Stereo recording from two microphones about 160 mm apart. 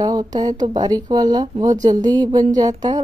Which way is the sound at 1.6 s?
50° right (ahead or behind).